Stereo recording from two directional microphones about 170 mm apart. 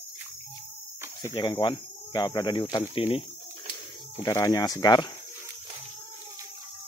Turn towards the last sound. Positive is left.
turn(degrees=25)  # may be behind; listen again after turning